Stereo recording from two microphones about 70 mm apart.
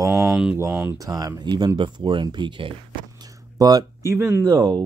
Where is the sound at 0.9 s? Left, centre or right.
Right.